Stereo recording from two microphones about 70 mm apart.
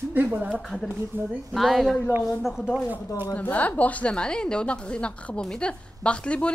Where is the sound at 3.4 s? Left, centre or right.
Left.